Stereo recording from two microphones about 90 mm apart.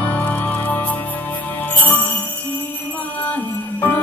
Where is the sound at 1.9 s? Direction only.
20° left (ahead or behind).